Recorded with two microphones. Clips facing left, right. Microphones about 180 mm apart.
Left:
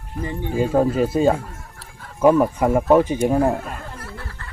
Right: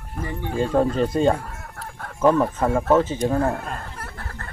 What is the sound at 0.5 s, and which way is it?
Speech, 10° left (ahead or behind).